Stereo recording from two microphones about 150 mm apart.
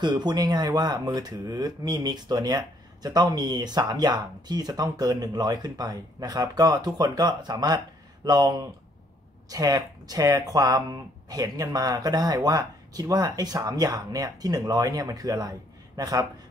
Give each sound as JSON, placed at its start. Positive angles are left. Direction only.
{"t": 0.0, "sound": "speech", "side_deg": -30}